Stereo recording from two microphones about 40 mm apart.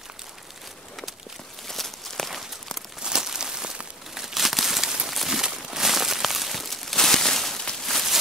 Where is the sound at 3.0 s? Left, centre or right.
Centre.